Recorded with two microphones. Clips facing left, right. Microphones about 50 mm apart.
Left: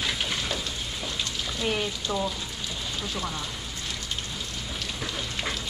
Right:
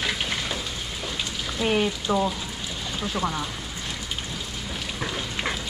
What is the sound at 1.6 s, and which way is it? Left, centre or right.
Speech, centre.